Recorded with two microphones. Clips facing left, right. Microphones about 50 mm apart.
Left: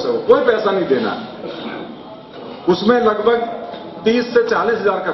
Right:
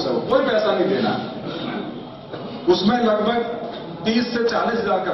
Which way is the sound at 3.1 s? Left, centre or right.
Centre.